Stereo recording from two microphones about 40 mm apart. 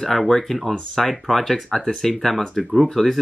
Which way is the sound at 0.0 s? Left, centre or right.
Centre.